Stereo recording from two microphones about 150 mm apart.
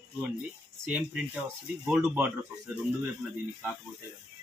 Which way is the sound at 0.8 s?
10° right (ahead or behind).